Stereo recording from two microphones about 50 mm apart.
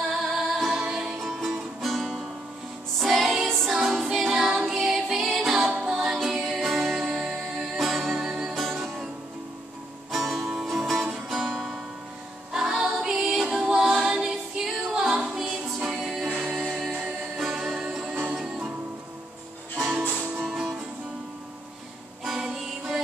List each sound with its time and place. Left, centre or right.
0.5 s music: centre
10.1 s music: centre
12.5 s music: centre
13.7 s a capella: centre
16.3 s music: centre
17.4 s music: centre
18.0 s music: right
18.3 s music: centre
20.0 s music: right
20.5 s music: centre
22.2 s music: centre